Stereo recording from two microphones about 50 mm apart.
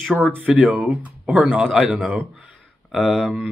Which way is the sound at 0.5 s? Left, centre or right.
Right.